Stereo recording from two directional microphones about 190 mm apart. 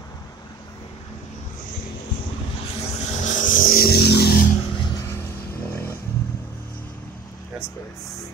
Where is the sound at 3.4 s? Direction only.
45° left (ahead or behind).